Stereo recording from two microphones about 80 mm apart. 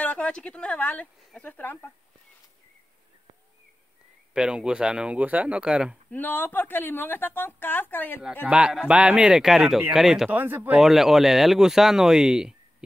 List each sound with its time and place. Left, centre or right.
0.0 s a woman's voice: centre
4.3 s speech: centre
6.1 s a woman's voice: left
8.5 s speech: centre
10.3 s speech: right
10.8 s speech: centre